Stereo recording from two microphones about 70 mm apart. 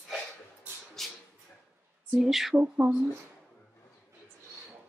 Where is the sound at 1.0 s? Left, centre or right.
Centre.